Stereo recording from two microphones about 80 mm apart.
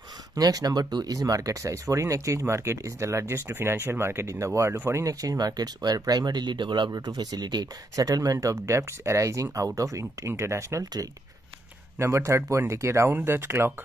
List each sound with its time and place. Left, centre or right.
0.4 s speech: right
7.9 s speech: right
12.0 s speech: right